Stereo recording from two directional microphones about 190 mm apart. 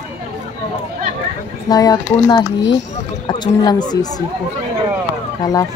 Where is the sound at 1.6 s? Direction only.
20° left (ahead or behind).